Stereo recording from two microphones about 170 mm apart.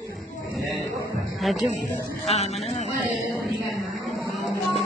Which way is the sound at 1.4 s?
Centre (ahead or behind).